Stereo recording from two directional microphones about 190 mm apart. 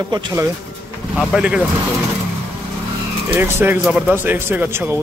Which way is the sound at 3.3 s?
10° right (ahead or behind).